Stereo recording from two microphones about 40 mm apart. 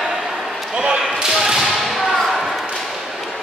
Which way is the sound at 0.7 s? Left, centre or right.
Right.